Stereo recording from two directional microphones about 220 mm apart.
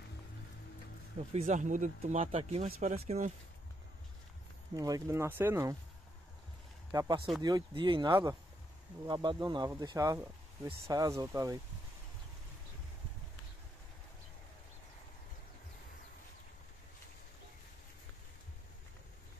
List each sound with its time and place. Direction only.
1.3 s speech: 30° right (ahead or behind)
4.7 s speech: 15° right (ahead or behind)
6.9 s speech: 20° right (ahead or behind)